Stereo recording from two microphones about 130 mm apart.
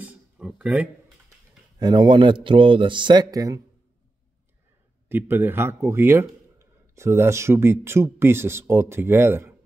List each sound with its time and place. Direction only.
0.0 s a sound: 10° right (ahead or behind)
1.8 s a man's voice: 35° right (ahead or behind)
5.0 s speech: 15° right (ahead or behind)